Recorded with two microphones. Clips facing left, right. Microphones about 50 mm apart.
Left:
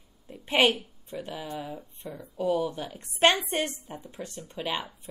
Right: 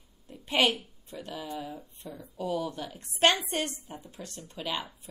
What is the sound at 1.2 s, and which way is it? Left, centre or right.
Speech, left.